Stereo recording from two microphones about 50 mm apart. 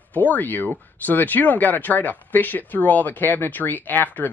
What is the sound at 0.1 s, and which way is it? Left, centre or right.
Speech, left.